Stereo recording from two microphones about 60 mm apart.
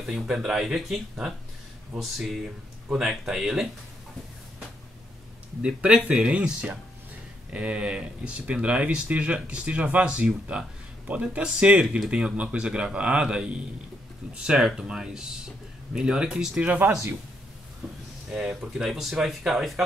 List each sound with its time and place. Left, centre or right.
0.0 s speech: centre
5.6 s speech: centre
16.6 s speech: right
18.3 s speech: centre
18.7 s speech: centre